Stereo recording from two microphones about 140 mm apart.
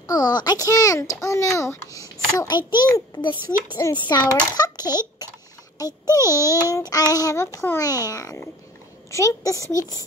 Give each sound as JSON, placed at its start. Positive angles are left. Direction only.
{"t": 0.0, "sound": "a child's voice", "side_deg": 30}